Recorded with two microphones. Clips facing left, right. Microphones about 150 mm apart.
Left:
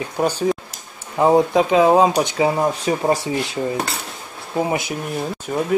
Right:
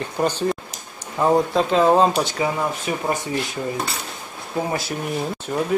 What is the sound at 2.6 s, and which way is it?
Speech, 35° left (ahead or behind).